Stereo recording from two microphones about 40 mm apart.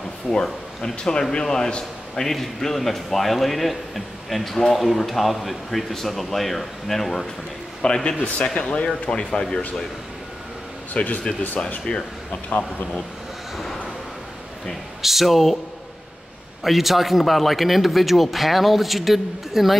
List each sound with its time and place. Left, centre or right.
0.3 s a man's voice: centre
0.7 s a man's voice: centre
2.1 s a man's voice: centre
7.8 s speech: left
8.6 s speech: left
10.9 s speech: left
12.3 s a man's voice: left
15.0 s a man's voice: centre
16.6 s a man's voice: centre